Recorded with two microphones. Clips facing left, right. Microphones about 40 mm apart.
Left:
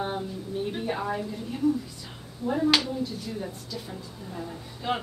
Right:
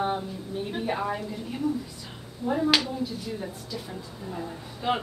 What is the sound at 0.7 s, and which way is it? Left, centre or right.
Speech, centre.